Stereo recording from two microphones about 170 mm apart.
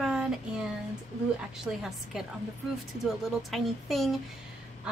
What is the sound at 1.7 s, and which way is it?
Speech, centre (ahead or behind).